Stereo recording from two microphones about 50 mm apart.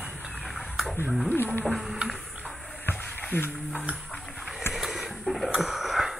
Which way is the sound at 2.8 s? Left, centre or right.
Left.